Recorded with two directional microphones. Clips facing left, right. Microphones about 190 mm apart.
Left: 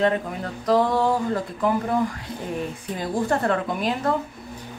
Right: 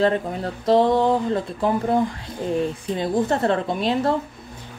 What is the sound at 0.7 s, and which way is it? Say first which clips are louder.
Speech: right 3 dB; 25° right (ahead or behind).